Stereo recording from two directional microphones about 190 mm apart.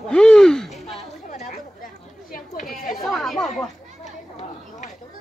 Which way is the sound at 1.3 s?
45° left (ahead or behind).